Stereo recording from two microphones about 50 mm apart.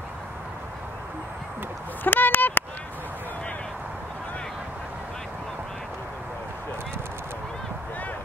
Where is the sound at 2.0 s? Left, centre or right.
Left.